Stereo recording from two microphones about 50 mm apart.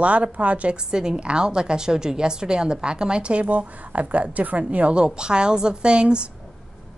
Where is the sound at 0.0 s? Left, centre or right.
Right.